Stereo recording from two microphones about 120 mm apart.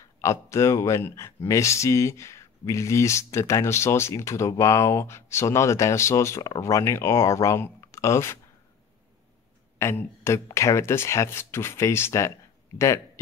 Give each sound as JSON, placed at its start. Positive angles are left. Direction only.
{"t": 0.2, "sound": "speech", "side_deg": 25}
{"t": 9.8, "sound": "speech", "side_deg": 20}